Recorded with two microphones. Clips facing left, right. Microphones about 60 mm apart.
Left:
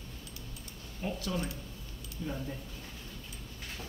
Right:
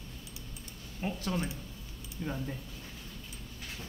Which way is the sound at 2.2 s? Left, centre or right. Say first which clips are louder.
Right 1 dB; right.